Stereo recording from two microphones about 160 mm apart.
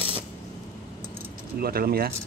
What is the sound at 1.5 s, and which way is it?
Speech, 70° right (ahead or behind).